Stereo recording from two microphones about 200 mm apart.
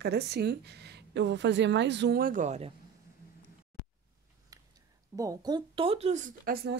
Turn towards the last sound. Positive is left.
turn(degrees=-50)  # may be behind; listen again after turning